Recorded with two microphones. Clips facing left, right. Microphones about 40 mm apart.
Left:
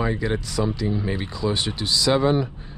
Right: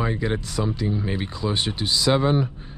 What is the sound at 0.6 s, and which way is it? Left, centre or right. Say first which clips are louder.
Speech: left 2 dB; centre.